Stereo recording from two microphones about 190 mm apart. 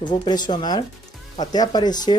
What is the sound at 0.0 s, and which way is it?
Speech, 25° left (ahead or behind).